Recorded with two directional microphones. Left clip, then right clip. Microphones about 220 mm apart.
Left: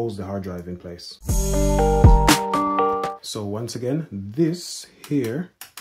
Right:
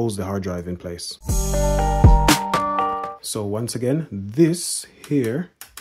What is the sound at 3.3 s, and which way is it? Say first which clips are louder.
Speech: right 3 dB; 25° right (ahead or behind).